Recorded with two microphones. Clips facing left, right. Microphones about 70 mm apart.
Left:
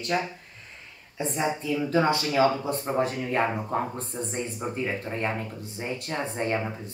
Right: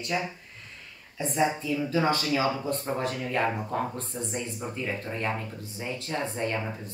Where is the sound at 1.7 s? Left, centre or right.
Left.